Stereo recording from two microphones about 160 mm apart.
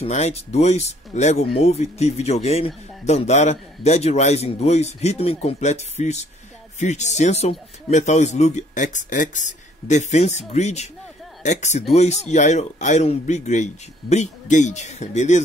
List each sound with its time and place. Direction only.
0.0 s speech: 45° left (ahead or behind)